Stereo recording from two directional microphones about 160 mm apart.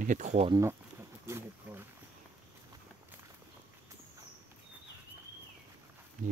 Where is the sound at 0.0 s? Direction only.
50° right (ahead or behind).